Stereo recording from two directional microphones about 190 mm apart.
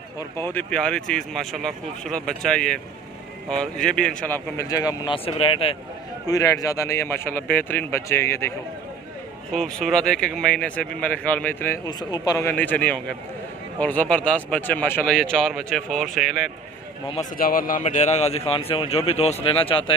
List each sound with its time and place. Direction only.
0.4 s a man's voice: 10° left (ahead or behind)
4.6 s speech: 20° left (ahead or behind)
6.2 s speech: 20° left (ahead or behind)
9.5 s a man's voice: 5° left (ahead or behind)
17.4 s a man's voice: 50° left (ahead or behind); by 19.9 s 30° left (ahead or behind)